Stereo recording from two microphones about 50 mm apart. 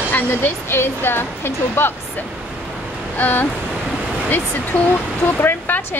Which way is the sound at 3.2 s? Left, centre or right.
Left.